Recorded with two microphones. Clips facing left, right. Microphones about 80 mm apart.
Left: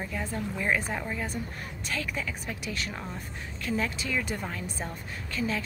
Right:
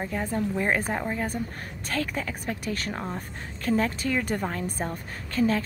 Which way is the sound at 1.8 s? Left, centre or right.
Right.